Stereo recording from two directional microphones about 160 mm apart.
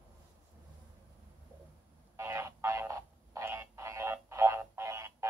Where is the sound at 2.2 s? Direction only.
15° right (ahead or behind).